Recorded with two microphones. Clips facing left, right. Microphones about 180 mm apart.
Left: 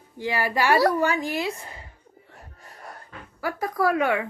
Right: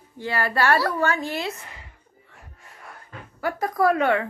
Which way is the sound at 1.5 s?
30° left (ahead or behind).